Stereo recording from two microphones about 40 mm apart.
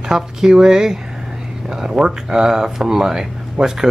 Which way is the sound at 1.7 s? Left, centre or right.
Centre.